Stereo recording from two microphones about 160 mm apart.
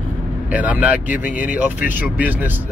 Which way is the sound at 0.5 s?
10° right (ahead or behind).